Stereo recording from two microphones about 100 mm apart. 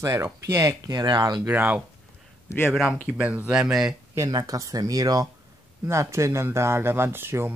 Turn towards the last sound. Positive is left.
turn(degrees=-25)  # may be behind; listen again after turning